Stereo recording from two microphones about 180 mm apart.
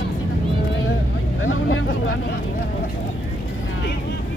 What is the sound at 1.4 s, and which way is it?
Vehicle, 90° left.